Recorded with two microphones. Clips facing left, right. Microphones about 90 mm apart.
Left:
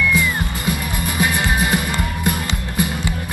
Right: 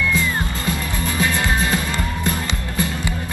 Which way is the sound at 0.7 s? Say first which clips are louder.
Left 1 dB; 15° left (ahead or behind).